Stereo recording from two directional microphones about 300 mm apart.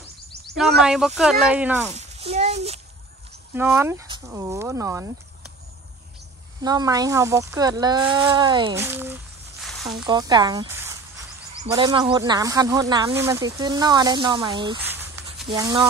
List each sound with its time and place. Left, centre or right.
0.6 s speech: centre
1.9 s a sound: right
3.5 s speech: centre
6.6 s speech: centre
10.0 s speech: centre